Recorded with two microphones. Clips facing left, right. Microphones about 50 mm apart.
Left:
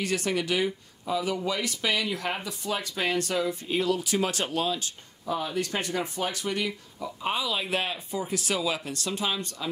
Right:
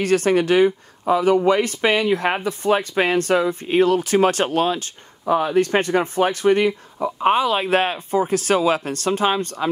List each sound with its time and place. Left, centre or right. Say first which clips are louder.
0.0 s speech: right 11 dB; right